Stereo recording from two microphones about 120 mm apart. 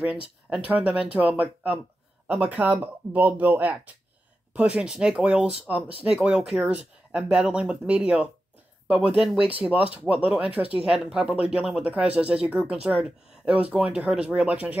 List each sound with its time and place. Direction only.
0.5 s speech: 15° right (ahead or behind)